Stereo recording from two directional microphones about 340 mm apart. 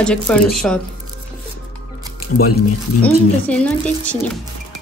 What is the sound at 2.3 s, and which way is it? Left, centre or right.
Music, left.